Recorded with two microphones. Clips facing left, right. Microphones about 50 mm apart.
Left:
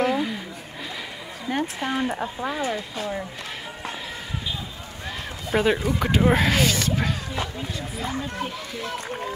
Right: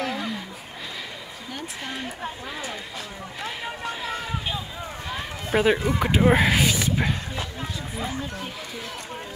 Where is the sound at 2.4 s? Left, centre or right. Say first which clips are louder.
Left 7 dB; left.